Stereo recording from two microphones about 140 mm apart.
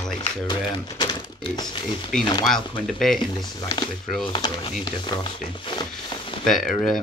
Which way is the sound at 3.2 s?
35° left (ahead or behind).